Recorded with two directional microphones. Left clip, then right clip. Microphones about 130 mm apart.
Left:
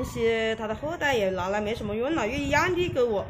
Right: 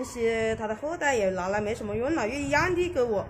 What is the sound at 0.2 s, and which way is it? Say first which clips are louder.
A woman's voice: left 1 dB; 10° left (ahead or behind).